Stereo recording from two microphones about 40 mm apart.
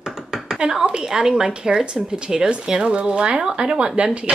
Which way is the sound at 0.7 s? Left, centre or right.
Right.